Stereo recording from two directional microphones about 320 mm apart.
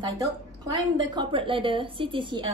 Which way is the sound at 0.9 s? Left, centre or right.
Centre.